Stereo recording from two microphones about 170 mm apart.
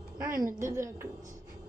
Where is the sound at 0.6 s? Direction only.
15° right (ahead or behind).